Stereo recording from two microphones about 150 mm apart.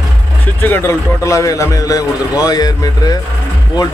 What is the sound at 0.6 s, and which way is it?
A man's voice, 15° left (ahead or behind).